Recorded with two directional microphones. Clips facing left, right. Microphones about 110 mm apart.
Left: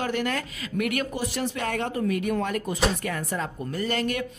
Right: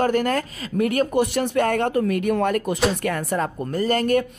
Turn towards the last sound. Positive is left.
turn(degrees=-45)  # may be behind; listen again after turning